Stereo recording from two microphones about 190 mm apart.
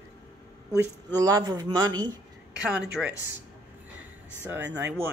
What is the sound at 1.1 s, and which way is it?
Speech, 20° right (ahead or behind).